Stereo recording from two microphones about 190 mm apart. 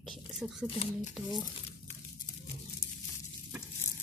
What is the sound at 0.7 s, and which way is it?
Speech, 30° left (ahead or behind).